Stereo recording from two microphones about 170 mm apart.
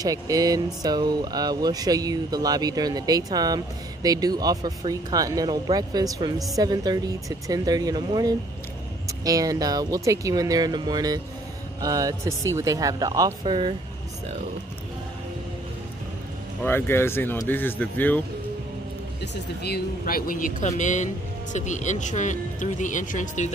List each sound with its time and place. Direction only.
0.0 s speech: 20° right (ahead or behind)
16.6 s speech: 15° left (ahead or behind)
19.6 s speech: 65° left (ahead or behind); by 23.5 s 45° left (ahead or behind)